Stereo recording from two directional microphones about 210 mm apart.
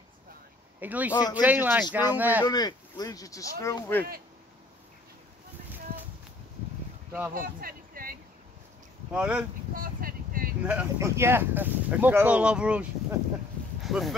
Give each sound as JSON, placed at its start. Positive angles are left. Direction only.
{"t": 0.7, "sound": "speech", "side_deg": -5}
{"t": 2.4, "sound": "speech", "side_deg": 20}
{"t": 7.1, "sound": "speech", "side_deg": -10}
{"t": 7.3, "sound": "a sound", "side_deg": -45}
{"t": 9.1, "sound": "speech", "side_deg": -5}
{"t": 9.8, "sound": "a sound", "side_deg": -45}
{"t": 10.6, "sound": "speech", "side_deg": -5}